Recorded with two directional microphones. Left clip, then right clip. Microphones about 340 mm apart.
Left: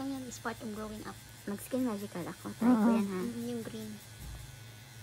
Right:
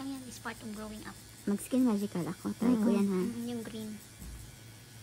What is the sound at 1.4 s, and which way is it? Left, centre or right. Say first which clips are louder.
Speech: right 4 dB; centre.